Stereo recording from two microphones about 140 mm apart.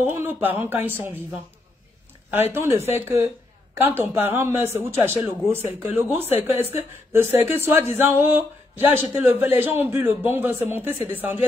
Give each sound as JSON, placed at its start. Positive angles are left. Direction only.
{"t": 0.0, "sound": "speech", "side_deg": -15}
{"t": 2.5, "sound": "speech", "side_deg": -20}